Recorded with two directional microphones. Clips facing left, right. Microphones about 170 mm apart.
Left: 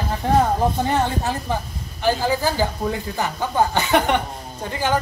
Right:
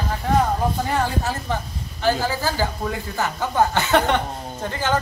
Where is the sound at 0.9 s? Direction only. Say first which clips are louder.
Left 2 dB; 20° left (ahead or behind).